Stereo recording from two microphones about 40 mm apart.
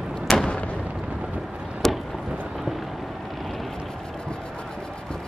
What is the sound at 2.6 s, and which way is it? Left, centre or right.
Vehicle, centre.